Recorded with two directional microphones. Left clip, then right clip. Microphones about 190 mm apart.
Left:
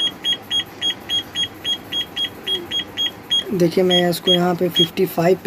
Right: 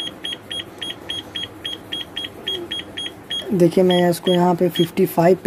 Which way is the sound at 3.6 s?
35° right (ahead or behind).